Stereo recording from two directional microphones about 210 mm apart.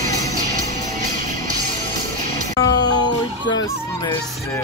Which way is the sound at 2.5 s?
15° left (ahead or behind).